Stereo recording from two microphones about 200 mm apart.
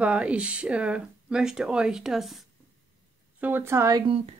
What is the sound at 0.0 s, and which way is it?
Speech, 5° right (ahead or behind).